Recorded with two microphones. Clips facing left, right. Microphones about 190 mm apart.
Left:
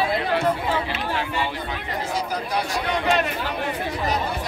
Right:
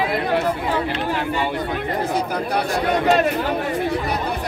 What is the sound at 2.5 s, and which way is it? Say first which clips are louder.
Chatter: right 5 dB; 45° right (ahead or behind).